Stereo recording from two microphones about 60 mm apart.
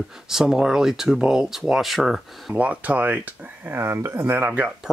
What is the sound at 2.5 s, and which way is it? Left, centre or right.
Speech, right.